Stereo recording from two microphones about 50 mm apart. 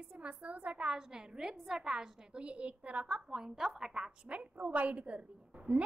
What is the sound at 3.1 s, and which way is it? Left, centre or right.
A woman's voice, centre.